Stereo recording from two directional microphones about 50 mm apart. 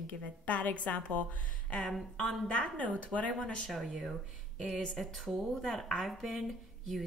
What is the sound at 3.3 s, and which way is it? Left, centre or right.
Speech, left.